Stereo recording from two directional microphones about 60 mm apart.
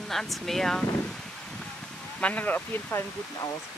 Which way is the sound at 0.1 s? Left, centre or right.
Centre.